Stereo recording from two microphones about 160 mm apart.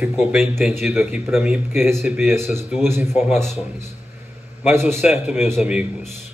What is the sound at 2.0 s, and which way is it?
Speech, 15° right (ahead or behind).